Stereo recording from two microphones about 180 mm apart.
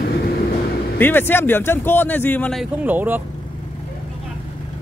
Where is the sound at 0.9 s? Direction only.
10° left (ahead or behind).